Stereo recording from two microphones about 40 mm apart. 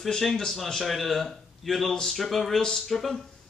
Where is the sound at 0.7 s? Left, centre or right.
Centre.